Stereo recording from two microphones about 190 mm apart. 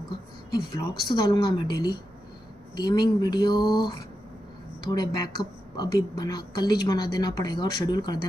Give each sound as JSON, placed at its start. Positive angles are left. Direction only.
{"t": 0.7, "sound": "a woman's voice", "side_deg": 20}
{"t": 4.9, "sound": "a woman's voice", "side_deg": 20}